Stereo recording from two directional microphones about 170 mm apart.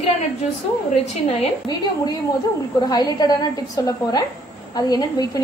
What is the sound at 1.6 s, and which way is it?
A woman's voice, 25° left (ahead or behind).